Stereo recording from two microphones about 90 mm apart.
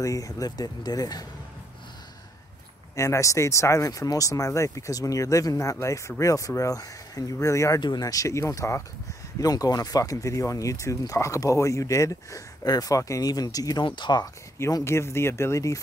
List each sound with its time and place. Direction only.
0.0 s speech: 40° left (ahead or behind)
3.0 s speech: 35° left (ahead or behind)
7.8 s speech: 50° left (ahead or behind)
13.8 s speech: 60° left (ahead or behind)
14.2 s speech: 35° left (ahead or behind)